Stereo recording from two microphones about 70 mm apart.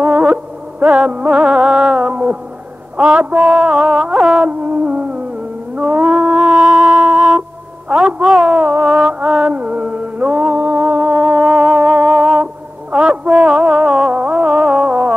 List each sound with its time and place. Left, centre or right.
0.0 s music: centre
3.0 s music: centre
4.5 s a sound: centre
6.0 s music: centre
8.8 s music: centre; by 11.2 s right
11.4 s music: centre